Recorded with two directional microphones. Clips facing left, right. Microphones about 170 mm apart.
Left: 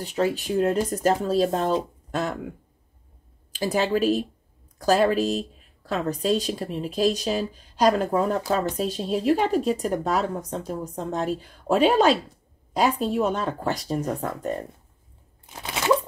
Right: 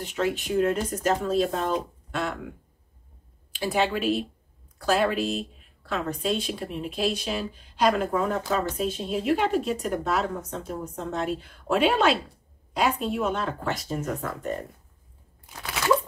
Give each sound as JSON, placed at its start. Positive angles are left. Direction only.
{"t": 0.0, "sound": "speech", "side_deg": 35}
{"t": 3.5, "sound": "speech", "side_deg": 40}
{"t": 15.5, "sound": "crunch", "side_deg": 25}